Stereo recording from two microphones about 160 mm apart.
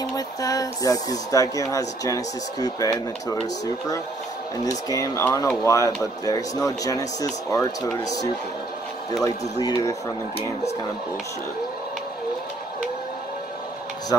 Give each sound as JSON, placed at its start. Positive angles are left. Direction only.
{"t": 0.1, "sound": "speech", "side_deg": 20}
{"t": 9.6, "sound": "speech", "side_deg": 25}